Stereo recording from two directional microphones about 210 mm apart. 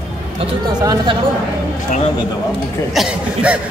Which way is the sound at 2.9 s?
5° right (ahead or behind).